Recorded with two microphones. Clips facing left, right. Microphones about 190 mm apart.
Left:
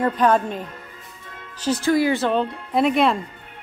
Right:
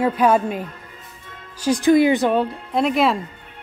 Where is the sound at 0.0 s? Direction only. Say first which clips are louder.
Right 2 dB; 10° right (ahead or behind).